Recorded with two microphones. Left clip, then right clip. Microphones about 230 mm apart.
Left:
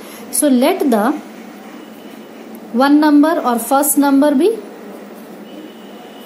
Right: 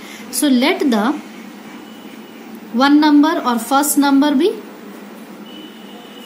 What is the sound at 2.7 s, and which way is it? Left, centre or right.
A woman's voice, centre.